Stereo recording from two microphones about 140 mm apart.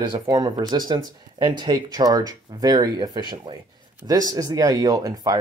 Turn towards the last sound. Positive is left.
turn(degrees=-25)  # may be behind; listen again after turning